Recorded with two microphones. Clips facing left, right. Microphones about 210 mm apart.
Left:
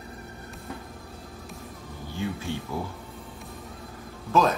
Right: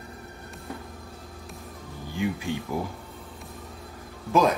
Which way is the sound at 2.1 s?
15° right (ahead or behind).